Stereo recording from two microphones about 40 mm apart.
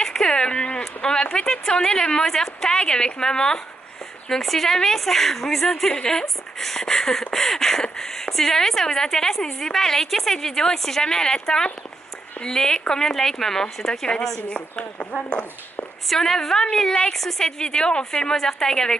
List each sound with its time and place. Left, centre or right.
0.0 s a woman's voice: centre
4.3 s speech: centre
5.9 s a woman's voice: centre
6.2 s a sound: centre
7.8 s speech: centre
14.5 s speech: left
16.1 s speech: centre
17.5 s a woman's voice: centre
18.3 s speech: centre